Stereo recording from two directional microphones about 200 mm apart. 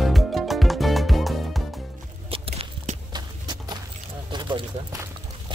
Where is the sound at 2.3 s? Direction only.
30° right (ahead or behind).